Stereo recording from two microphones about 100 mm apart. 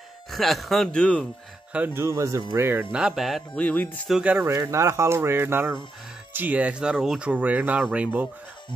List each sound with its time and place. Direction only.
0.3 s speech: centre (ahead or behind)
2.0 s speech: 30° right (ahead or behind)
2.9 s speech: 5° right (ahead or behind)
3.5 s speech: 15° left (ahead or behind)
4.2 s speech: 20° right (ahead or behind)
4.6 s speech: 30° right (ahead or behind); by 8.3 s 15° right (ahead or behind)